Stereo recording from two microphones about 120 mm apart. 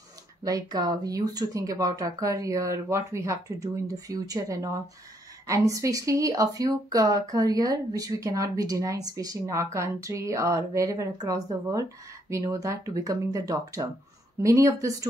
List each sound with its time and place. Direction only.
0.4 s speech: 35° right (ahead or behind)